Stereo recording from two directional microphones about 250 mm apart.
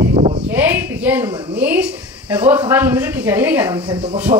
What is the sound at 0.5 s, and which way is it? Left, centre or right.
A woman's voice, centre.